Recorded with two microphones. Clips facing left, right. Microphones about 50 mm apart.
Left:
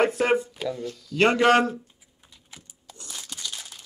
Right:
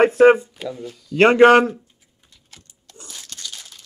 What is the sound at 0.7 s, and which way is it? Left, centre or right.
Speech, centre.